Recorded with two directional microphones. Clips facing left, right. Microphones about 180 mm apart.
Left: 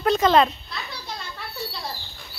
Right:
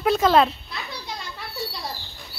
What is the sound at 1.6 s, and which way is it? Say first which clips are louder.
Bird: right 1 dB; centre (ahead or behind).